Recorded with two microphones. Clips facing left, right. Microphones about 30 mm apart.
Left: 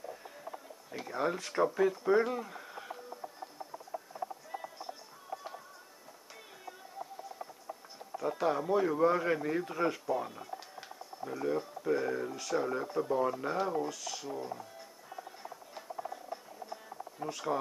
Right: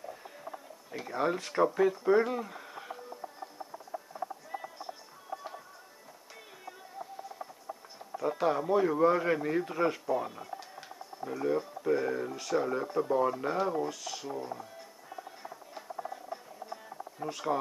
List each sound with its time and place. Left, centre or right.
0.9 s speech: centre
8.2 s speech: centre
17.2 s speech: centre